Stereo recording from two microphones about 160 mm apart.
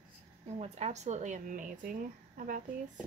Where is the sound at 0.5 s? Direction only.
45° right (ahead or behind).